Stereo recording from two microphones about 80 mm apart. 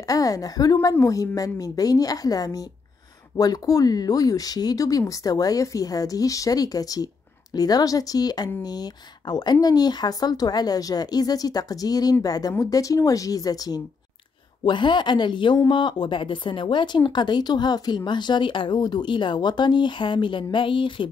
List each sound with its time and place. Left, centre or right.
0.0 s speech: left
14.6 s speech: left